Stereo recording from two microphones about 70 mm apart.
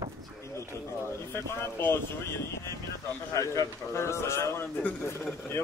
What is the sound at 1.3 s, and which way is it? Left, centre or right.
Speech, left.